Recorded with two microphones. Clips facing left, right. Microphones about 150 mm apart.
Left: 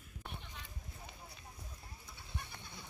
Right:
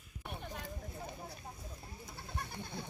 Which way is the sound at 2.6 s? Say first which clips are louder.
Right 9 dB; 60° right (ahead or behind).